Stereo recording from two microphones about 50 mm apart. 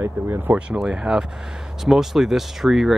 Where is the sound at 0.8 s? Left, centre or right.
Centre.